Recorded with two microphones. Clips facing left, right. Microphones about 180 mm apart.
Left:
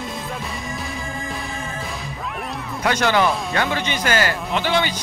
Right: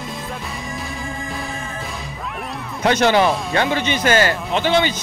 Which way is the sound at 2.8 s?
20° right (ahead or behind).